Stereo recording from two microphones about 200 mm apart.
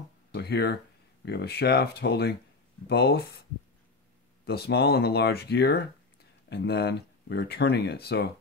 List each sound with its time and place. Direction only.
0.3 s speech: 55° left (ahead or behind)
4.5 s speech: 55° left (ahead or behind)